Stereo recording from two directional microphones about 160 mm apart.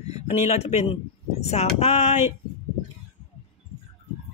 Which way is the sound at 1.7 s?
40° left (ahead or behind).